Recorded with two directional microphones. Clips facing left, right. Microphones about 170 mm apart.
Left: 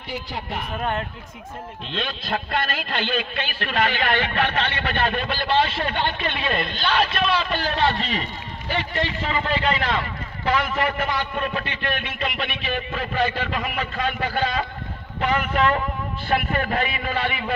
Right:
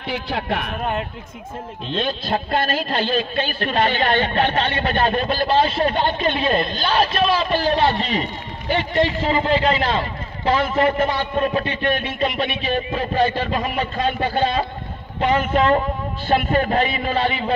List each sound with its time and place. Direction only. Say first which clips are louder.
0.0 s speech: right 6 dB; 85° right
1.9 s a man's voice: right 5 dB; 35° right (ahead or behind)